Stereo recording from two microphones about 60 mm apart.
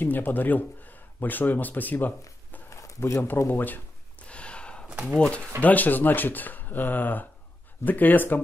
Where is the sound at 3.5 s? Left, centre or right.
Left.